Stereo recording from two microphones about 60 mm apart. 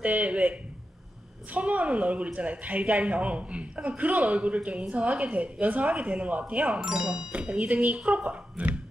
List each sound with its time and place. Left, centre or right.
0.0 s speech: right
6.8 s speech: centre
7.3 s speech: right